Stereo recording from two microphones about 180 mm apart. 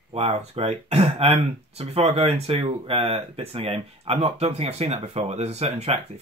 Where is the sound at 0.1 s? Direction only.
35° right (ahead or behind).